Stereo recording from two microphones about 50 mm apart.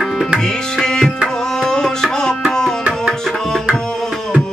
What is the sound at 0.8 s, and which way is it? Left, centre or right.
Music, centre.